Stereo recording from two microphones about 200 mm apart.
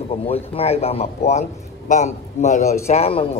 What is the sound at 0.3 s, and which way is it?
A man's voice, 30° left (ahead or behind).